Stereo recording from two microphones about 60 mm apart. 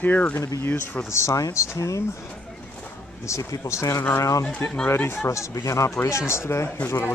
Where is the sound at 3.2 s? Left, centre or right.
Left.